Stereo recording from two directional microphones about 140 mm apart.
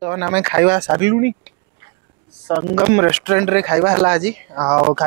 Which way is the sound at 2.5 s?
20° right (ahead or behind).